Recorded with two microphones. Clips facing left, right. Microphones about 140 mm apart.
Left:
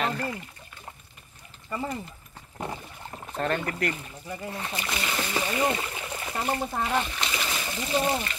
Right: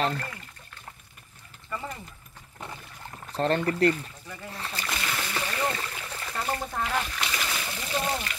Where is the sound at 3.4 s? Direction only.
30° right (ahead or behind).